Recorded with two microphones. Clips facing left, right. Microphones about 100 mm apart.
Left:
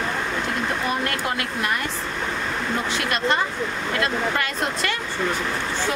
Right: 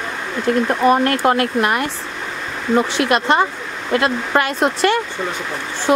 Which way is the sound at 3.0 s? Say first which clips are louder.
Right 7 dB; 60° right (ahead or behind).